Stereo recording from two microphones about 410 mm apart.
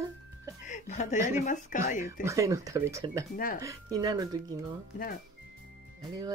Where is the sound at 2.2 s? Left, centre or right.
Centre.